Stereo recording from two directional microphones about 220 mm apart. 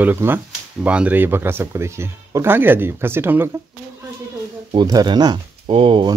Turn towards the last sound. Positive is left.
turn(degrees=-25)  # may be behind; listen again after turning